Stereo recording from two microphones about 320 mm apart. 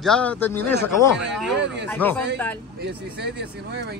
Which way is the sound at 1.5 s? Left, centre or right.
Right.